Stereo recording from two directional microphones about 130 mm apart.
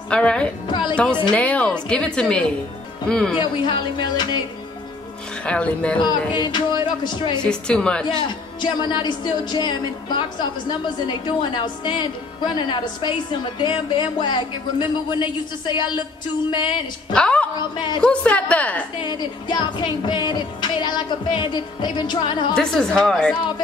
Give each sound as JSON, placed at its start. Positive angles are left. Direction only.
{"t": 0.1, "sound": "a woman's voice", "side_deg": 10}
{"t": 0.7, "sound": "music", "side_deg": 40}
{"t": 1.3, "sound": "a woman's voice", "side_deg": 10}
{"t": 3.3, "sound": "a woman's voice", "side_deg": 40}
{"t": 5.4, "sound": "a woman's voice", "side_deg": 10}
{"t": 5.9, "sound": "a woman's voice", "side_deg": 35}
{"t": 7.4, "sound": "a woman's voice", "side_deg": 5}
{"t": 8.5, "sound": "a woman's voice", "side_deg": 35}
{"t": 17.1, "sound": "a woman's voice", "side_deg": 10}
{"t": 17.7, "sound": "a woman's voice", "side_deg": 35}
{"t": 18.0, "sound": "a woman's voice", "side_deg": 10}
{"t": 18.9, "sound": "a woman's voice", "side_deg": 35}
{"t": 22.5, "sound": "a woman's voice", "side_deg": 5}